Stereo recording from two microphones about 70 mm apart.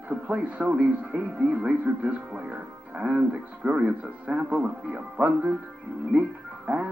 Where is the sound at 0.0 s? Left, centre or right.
Centre.